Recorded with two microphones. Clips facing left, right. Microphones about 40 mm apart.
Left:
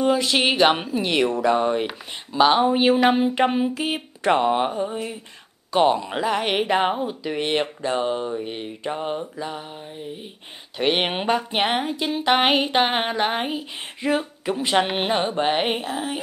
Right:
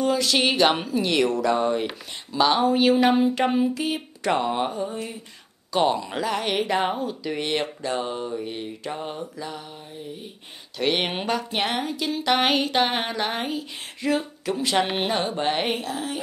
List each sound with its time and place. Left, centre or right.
0.0 s speech: left
10.8 s speech: left